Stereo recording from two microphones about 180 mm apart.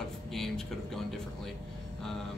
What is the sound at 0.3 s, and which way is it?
Speech, centre (ahead or behind).